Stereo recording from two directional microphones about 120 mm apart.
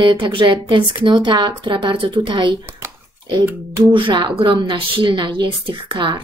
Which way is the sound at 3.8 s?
40° right (ahead or behind).